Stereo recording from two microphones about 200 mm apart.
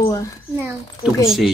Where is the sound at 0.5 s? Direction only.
10° right (ahead or behind).